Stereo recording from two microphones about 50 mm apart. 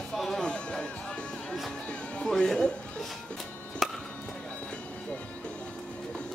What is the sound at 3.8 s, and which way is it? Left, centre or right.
Music, centre.